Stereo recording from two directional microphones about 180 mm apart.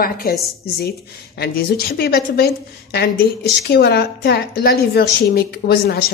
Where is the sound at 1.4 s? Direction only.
60° left (ahead or behind).